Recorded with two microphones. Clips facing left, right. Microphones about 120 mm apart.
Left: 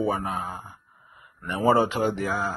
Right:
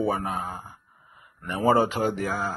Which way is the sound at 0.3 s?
45° right (ahead or behind).